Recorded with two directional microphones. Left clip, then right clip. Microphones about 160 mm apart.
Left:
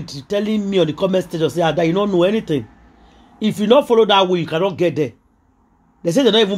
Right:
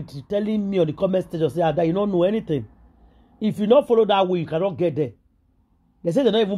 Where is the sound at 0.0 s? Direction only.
35° right (ahead or behind).